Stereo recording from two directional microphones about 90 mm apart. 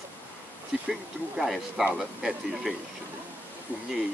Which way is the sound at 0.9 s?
Centre (ahead or behind).